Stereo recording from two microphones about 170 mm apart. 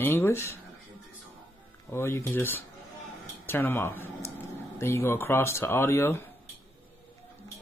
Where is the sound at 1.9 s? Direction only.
15° left (ahead or behind).